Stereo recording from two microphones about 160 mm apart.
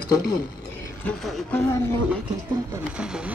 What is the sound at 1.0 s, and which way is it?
Speech, 5° left (ahead or behind).